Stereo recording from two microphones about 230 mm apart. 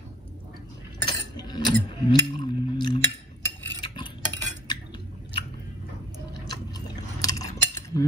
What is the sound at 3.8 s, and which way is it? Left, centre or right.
Stir, left.